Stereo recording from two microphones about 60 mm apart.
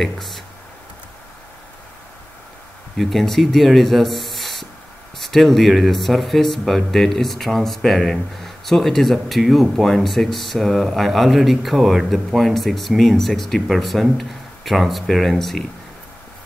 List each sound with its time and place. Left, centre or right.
0.0 s speech: centre
3.0 s speech: centre